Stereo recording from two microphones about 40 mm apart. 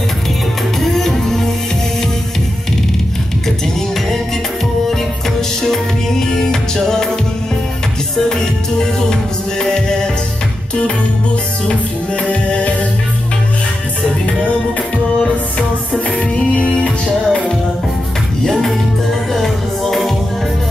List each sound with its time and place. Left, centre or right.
0.7 s music: centre
5.6 s music: centre
9.6 s music: centre
16.3 s music: left
18.4 s music: centre